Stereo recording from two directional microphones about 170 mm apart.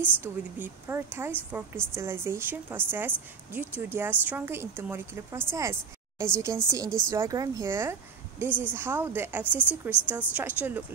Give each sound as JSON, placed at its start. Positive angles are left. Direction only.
{"t": 0.0, "sound": "a woman's voice", "side_deg": -10}